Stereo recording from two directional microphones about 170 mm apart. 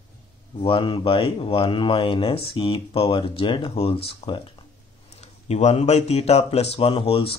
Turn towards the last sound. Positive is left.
turn(degrees=30)  # may be behind; listen again after turning